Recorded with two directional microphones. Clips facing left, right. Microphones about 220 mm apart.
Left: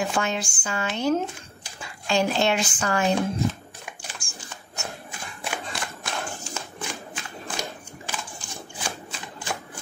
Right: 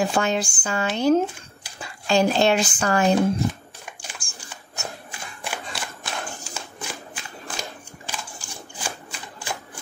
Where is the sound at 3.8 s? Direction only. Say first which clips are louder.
Even; centre (ahead or behind).